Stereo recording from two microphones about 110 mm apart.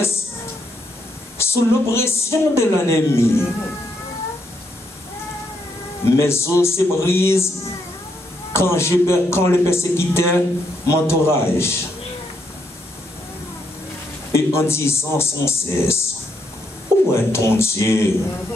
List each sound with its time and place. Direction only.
1.4 s a woman's voice: 25° left (ahead or behind)
6.0 s a woman's voice: 25° left (ahead or behind)
8.5 s a woman's voice: 25° left (ahead or behind)
14.3 s a woman's voice: 25° left (ahead or behind)
17.1 s a woman's voice: 25° left (ahead or behind)